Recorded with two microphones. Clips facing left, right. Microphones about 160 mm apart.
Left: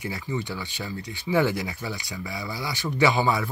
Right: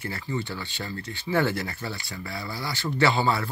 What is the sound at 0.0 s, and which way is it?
Speech, 15° left (ahead or behind).